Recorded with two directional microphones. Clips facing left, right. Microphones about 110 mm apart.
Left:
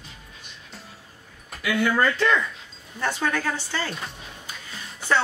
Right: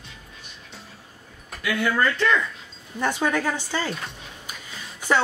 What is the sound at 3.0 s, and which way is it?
Speech, 15° right (ahead or behind).